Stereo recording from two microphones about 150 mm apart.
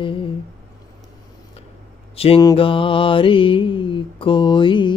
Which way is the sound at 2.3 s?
30° left (ahead or behind).